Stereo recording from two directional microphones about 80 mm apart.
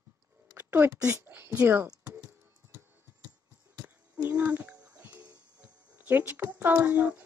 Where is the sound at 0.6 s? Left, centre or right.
Right.